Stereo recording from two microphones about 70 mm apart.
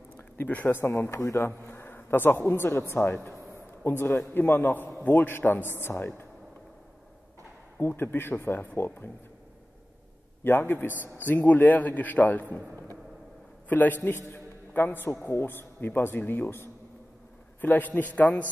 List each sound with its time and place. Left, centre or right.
0.4 s a man's voice: left
0.8 s speech: left
1.6 s a woman's voice: left
3.5 s a sound: left
4.3 s speech: left
7.8 s speech: left
10.4 s a man's voice: left
13.7 s a man's voice: left